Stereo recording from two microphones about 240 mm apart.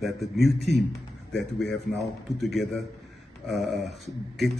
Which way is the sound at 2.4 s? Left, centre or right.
Centre.